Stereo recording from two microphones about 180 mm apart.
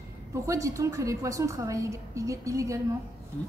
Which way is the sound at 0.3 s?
15° right (ahead or behind).